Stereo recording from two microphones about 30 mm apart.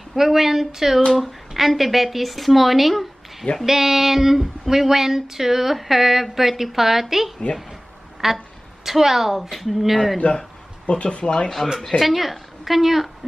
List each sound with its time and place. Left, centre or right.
0.1 s speech: centre
10.2 s a man's voice: left
11.2 s speech: left
12.0 s speech: centre